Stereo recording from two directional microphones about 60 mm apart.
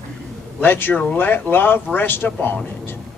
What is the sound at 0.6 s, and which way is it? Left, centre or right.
Speech, left.